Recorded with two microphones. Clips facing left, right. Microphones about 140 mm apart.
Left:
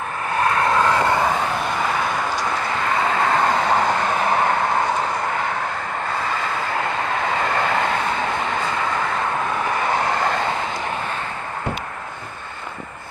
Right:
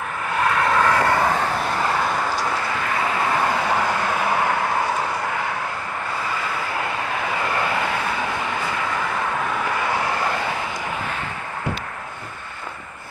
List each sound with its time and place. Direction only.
0.4 s vehicle: 35° left (ahead or behind)
0.7 s vehicle: 20° left (ahead or behind)
1.3 s vehicle: 5° right (ahead or behind)
2.6 s vehicle: 20° left (ahead or behind)
7.2 s vehicle: 20° left (ahead or behind)
7.7 s train: 20° left (ahead or behind)
9.7 s vehicle: 20° left (ahead or behind)